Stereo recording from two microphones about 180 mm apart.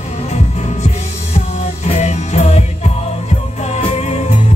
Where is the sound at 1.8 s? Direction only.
40° left (ahead or behind).